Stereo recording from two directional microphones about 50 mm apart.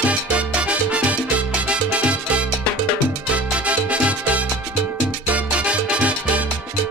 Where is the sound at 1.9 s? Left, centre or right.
Right.